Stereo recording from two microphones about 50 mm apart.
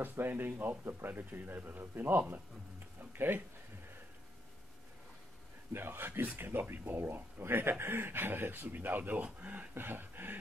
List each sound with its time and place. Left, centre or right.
0.0 s speech: right
5.7 s speech: right
9.8 s speech: right